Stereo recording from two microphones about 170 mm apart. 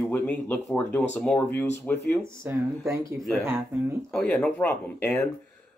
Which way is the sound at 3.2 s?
5° left (ahead or behind).